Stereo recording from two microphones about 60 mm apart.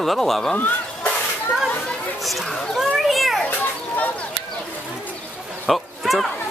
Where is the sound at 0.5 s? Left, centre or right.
Left.